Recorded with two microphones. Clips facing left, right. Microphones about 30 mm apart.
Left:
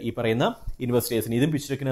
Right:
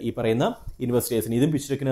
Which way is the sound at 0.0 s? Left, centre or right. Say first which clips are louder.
Right 1 dB; centre.